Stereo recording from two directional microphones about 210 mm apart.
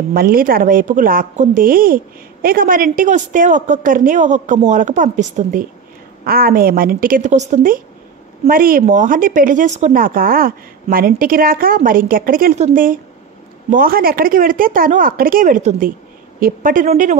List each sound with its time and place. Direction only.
0.1 s a woman's voice: 45° right (ahead or behind)